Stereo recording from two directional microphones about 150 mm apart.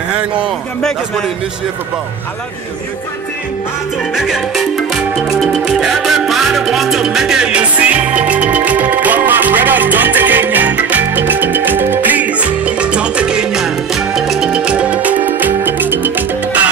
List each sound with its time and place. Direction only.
0.1 s speech: 5° right (ahead or behind)
4.1 s music: 5° right (ahead or behind)